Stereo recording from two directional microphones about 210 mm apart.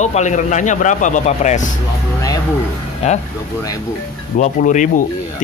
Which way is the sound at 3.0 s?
30° left (ahead or behind).